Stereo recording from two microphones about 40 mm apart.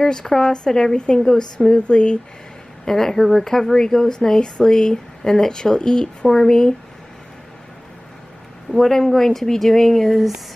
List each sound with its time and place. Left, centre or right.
0.0 s a woman's voice: centre
1.8 s a woman's voice: left
2.8 s speech: centre
8.7 s speech: centre